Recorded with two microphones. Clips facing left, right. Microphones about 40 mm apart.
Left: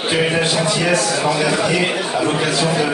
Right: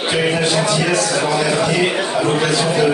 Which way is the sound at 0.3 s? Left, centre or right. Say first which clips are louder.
Right 1 dB; centre.